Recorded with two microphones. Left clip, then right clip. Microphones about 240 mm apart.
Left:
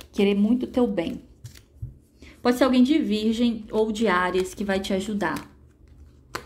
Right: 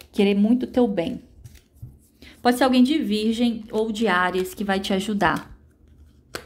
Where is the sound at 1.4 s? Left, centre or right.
Left.